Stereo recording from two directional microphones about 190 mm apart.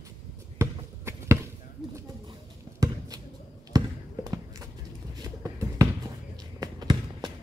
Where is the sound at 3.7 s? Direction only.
20° right (ahead or behind).